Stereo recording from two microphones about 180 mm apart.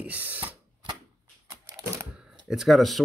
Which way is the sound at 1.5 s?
15° right (ahead or behind).